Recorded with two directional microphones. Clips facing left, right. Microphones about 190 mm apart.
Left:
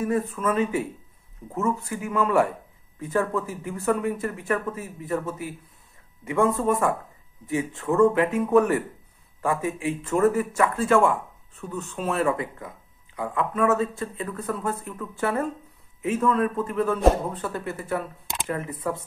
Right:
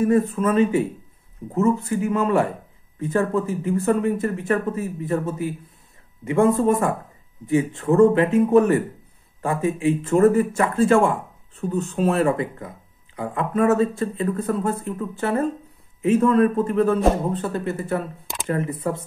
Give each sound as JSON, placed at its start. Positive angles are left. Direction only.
{"t": 0.0, "sound": "speech", "side_deg": -30}
{"t": 1.9, "sound": "speech", "side_deg": -25}